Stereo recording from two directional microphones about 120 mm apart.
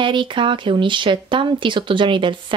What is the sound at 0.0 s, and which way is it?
Speech, 45° right (ahead or behind).